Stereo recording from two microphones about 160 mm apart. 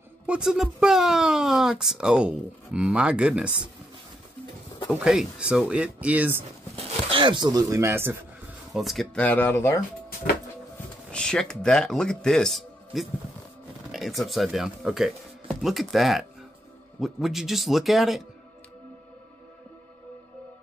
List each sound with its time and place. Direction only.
0.3 s speech: 5° right (ahead or behind)
4.8 s speech: 5° right (ahead or behind)
6.8 s speech: 35° right (ahead or behind); by 8.2 s 15° right (ahead or behind)
8.7 s speech: centre (ahead or behind); by 9.8 s 15° left (ahead or behind)
11.1 s speech: 5° left (ahead or behind)